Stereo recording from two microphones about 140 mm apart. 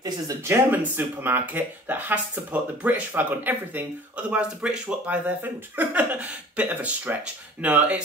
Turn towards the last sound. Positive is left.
turn(degrees=-10)  # may be behind; listen again after turning